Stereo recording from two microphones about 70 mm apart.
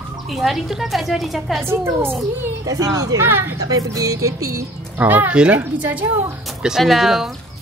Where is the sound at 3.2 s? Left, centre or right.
Right.